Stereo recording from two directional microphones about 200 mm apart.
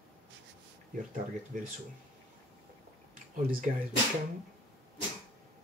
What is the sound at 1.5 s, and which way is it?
Speech, 40° right (ahead or behind).